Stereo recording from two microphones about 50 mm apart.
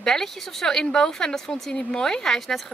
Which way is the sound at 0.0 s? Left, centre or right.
Centre.